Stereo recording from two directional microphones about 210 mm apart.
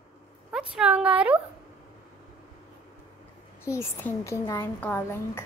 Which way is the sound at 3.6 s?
15° left (ahead or behind).